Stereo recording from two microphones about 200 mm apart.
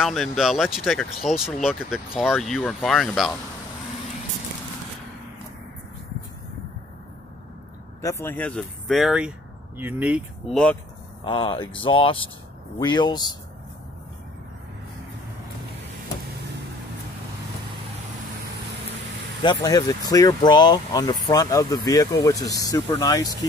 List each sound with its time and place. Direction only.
0.0 s speech: centre (ahead or behind)
8.0 s speech: 15° left (ahead or behind); by 10.6 s 5° right (ahead or behind)
11.2 s speech: 25° left (ahead or behind)
19.4 s speech: 20° left (ahead or behind)